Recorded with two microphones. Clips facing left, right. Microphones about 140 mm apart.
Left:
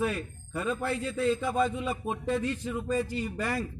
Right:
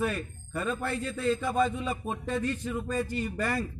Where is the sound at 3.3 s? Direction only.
10° left (ahead or behind).